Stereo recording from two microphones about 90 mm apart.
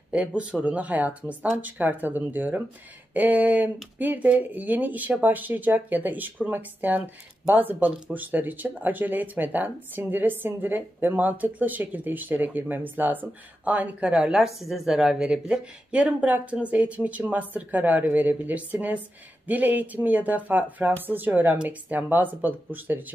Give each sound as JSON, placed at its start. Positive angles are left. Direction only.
{"t": 0.1, "sound": "speech", "side_deg": -10}